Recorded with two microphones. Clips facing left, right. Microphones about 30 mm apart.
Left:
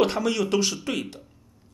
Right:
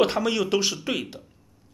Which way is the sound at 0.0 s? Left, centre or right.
Centre.